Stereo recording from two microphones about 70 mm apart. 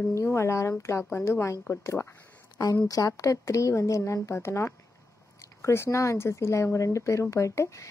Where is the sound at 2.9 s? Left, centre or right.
Left.